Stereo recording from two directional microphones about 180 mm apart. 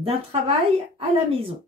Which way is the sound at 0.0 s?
30° right (ahead or behind).